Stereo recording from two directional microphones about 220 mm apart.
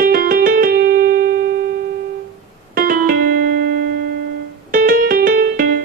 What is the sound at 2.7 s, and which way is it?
Music, 40° right (ahead or behind).